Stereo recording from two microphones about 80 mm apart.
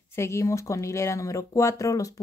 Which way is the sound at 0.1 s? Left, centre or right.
Left.